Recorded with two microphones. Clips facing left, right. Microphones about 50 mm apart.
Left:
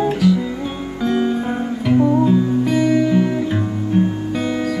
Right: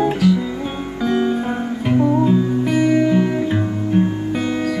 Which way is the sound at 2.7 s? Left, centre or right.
Right.